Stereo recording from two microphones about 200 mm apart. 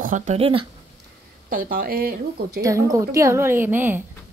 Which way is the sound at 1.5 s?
45° right (ahead or behind).